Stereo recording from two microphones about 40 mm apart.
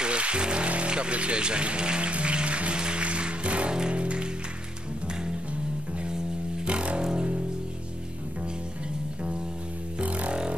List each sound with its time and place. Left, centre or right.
0.0 s music: right
6.6 s music: right
9.9 s music: right